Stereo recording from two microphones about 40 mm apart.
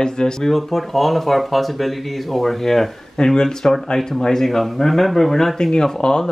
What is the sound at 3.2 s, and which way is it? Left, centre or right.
Speech, centre.